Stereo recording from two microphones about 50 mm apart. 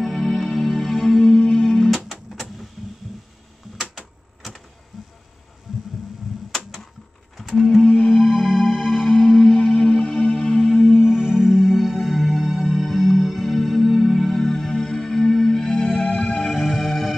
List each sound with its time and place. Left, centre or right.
0.0 s music: centre
1.5 s music: centre
3.9 s typewriter: centre
5.7 s heart sounds: centre
6.5 s typewriter: centre
7.3 s music: centre
8.1 s music: centre
11.5 s music: centre
16.4 s music: centre